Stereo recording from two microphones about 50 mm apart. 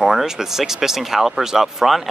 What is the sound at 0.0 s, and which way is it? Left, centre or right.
Speech, centre.